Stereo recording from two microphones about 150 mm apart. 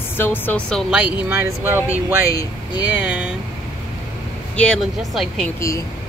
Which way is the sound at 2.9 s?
10° right (ahead or behind).